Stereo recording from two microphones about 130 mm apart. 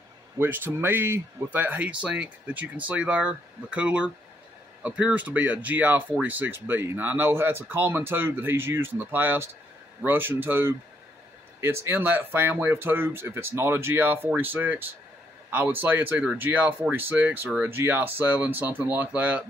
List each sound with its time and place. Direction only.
0.4 s speech: 15° right (ahead or behind)